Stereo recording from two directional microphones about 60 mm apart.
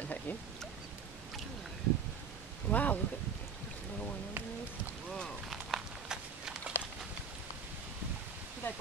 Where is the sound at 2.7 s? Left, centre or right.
Left.